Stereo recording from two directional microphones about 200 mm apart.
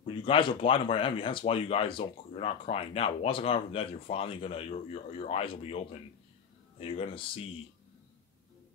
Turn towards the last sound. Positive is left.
turn(degrees=25)  # may be behind; listen again after turning